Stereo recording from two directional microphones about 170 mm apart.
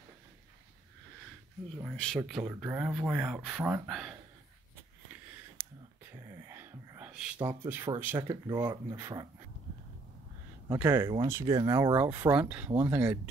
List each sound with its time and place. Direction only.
2.0 s speech: centre (ahead or behind)
6.1 s whispering: 20° right (ahead or behind); by 7.3 s 5° right (ahead or behind)
7.3 s speech: 15° right (ahead or behind)
8.2 s speech: 25° right (ahead or behind)
10.7 s speech: 10° right (ahead or behind)